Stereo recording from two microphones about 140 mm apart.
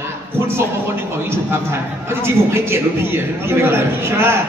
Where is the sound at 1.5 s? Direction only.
15° right (ahead or behind).